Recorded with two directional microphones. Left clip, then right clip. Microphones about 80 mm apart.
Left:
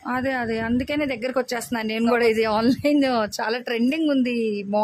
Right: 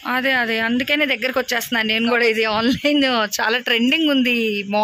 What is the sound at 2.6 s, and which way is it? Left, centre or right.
A woman's voice, centre.